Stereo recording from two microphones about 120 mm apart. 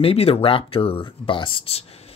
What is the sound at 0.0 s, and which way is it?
Speech, 55° left (ahead or behind).